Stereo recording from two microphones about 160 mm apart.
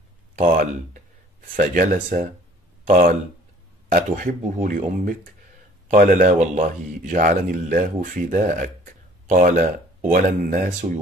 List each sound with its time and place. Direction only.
0.4 s speech: 50° right (ahead or behind)